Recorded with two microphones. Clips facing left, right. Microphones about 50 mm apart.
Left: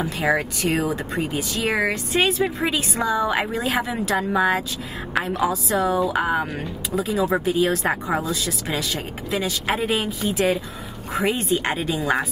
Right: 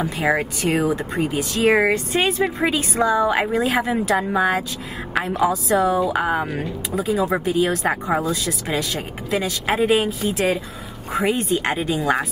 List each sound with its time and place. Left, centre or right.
0.0 s speech: centre
1.7 s a woman's voice: centre
2.1 s a woman's voice: centre
7.2 s a woman's voice: centre